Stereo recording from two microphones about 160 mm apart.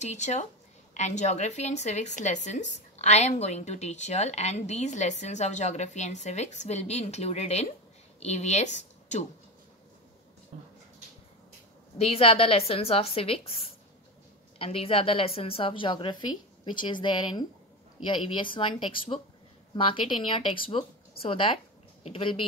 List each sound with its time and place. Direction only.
0.0 s a woman's voice: 45° left (ahead or behind)
12.0 s a woman's voice: 35° left (ahead or behind)
14.6 s a woman's voice: 35° left (ahead or behind)